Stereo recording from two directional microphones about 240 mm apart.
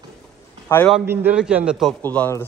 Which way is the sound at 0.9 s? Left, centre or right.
Centre.